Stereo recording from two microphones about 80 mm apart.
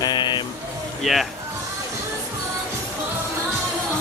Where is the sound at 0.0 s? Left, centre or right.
Left.